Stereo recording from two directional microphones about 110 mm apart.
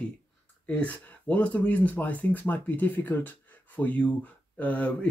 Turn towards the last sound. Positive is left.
turn(degrees=15)  # may be behind; listen again after turning